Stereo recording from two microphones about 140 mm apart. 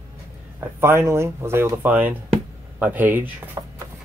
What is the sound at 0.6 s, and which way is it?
Speech, 15° right (ahead or behind).